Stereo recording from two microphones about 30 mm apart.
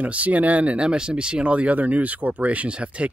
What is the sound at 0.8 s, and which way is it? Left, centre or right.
Speech, right.